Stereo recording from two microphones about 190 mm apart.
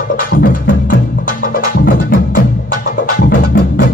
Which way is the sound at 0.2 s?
45° left (ahead or behind).